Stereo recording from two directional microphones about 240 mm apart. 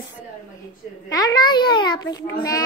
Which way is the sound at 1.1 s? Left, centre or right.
Centre.